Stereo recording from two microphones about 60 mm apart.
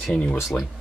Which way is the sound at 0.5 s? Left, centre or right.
Left.